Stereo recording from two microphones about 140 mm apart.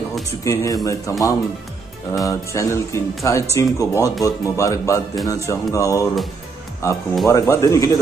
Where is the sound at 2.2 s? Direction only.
20° left (ahead or behind).